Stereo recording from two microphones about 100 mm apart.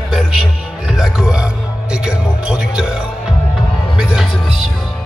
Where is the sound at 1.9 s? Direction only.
10° right (ahead or behind).